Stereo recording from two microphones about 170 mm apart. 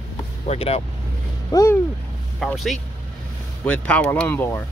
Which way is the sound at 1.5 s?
20° left (ahead or behind).